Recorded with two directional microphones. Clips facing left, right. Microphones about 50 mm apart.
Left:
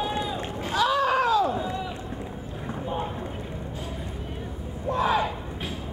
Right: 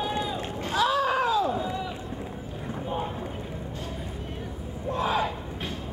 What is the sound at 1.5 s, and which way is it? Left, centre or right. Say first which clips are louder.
Run: even; centre.